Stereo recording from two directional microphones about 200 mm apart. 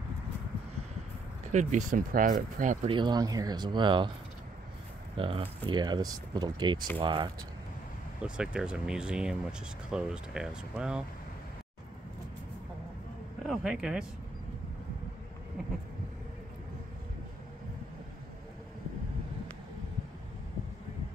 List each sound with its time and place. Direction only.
1.5 s speech: 35° right (ahead or behind)
2.9 s speech: 20° right (ahead or behind)
5.1 s speech: 25° right (ahead or behind)
8.2 s speech: 5° right (ahead or behind)
13.5 s speech: 5° right (ahead or behind)